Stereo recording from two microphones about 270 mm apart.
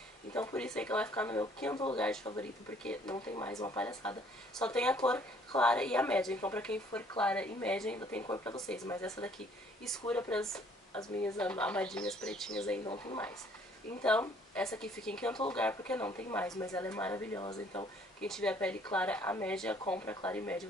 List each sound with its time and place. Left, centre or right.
0.3 s a woman's voice: centre
12.8 s speech: centre
14.0 s a woman's voice: centre
18.2 s a woman's voice: centre